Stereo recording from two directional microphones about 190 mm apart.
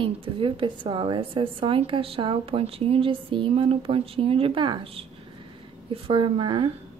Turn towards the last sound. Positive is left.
turn(degrees=-25)  # may be behind; listen again after turning